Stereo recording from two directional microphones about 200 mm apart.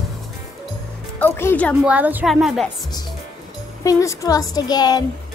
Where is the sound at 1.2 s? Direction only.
10° left (ahead or behind).